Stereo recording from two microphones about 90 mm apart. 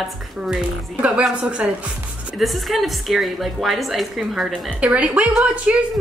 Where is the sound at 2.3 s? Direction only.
Centre (ahead or behind).